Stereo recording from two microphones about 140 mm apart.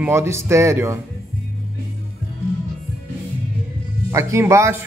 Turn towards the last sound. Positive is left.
turn(degrees=-20)  # may be behind; listen again after turning